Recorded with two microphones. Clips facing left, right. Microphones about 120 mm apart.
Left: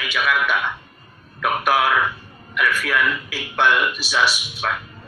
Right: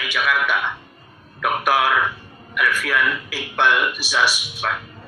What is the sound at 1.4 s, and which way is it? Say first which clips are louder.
A man's voice: even; centre (ahead or behind).